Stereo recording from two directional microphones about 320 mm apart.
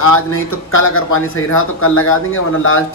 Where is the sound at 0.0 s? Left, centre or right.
Left.